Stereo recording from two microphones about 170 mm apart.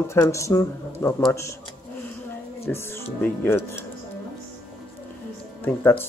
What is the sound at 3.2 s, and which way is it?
Speech, 10° left (ahead or behind).